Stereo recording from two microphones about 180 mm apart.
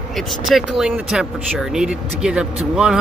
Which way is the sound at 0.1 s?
Centre (ahead or behind).